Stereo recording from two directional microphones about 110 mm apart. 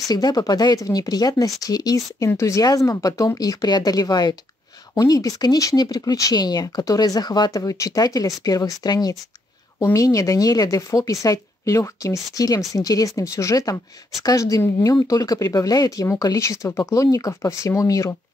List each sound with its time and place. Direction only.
0.1 s speech: 35° left (ahead or behind)